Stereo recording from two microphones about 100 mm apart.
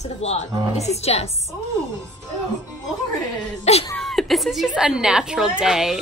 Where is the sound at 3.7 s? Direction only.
90° left.